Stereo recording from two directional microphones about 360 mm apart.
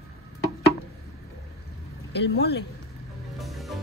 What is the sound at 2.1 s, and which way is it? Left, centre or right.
Speech, left.